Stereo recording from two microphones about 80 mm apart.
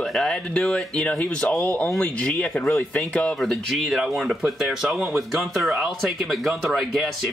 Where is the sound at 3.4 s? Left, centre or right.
Centre.